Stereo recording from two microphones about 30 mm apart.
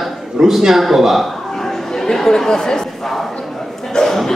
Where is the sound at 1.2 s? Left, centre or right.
Centre.